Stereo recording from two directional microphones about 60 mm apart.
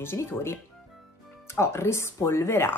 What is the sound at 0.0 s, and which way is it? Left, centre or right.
Speech, left.